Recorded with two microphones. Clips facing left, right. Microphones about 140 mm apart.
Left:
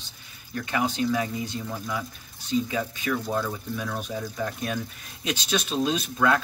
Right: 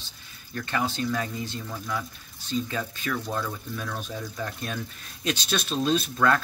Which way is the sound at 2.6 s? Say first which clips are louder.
Left 3 dB; 10° left (ahead or behind).